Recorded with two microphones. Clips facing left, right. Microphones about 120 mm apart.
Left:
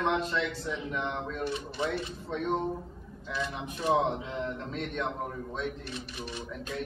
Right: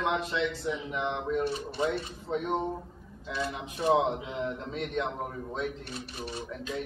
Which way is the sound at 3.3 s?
30° right (ahead or behind).